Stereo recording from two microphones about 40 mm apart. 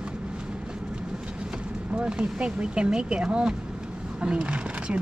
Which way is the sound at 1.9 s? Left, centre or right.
Right.